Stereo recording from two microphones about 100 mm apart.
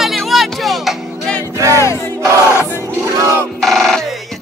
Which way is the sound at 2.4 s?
25° left (ahead or behind).